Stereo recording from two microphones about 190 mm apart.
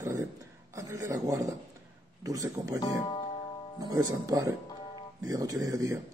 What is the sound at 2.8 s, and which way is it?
Speech, 25° left (ahead or behind).